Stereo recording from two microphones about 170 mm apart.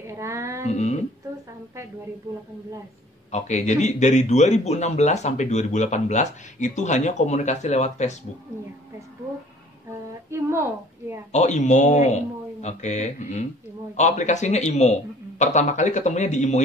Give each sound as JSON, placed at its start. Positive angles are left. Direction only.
{"t": 0.0, "sound": "music", "side_deg": -15}
{"t": 0.7, "sound": "speech", "side_deg": 40}
{"t": 3.3, "sound": "a man's voice", "side_deg": 40}
{"t": 11.3, "sound": "a man's voice", "side_deg": 45}